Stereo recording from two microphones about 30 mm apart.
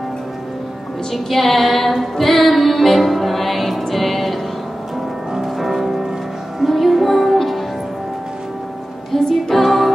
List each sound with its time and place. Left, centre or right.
1.3 s music: centre
5.6 s music: centre
6.7 s music: centre
9.3 s music: centre